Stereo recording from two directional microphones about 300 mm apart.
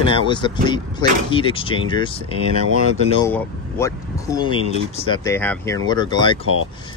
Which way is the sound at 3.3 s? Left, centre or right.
Centre.